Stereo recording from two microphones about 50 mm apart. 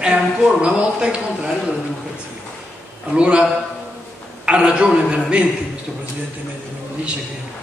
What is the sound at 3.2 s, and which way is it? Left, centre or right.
Speech, right.